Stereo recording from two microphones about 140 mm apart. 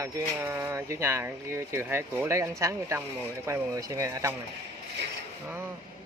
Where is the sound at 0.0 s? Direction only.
20° right (ahead or behind).